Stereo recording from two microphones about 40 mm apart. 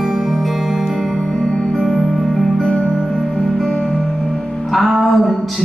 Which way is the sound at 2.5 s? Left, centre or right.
Centre.